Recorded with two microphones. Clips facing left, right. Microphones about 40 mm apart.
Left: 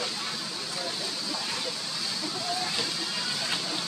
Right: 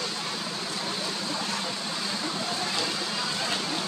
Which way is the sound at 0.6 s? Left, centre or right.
Right.